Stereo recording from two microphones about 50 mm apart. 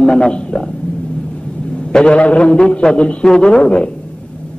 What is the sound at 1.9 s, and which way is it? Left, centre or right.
A man's voice, centre.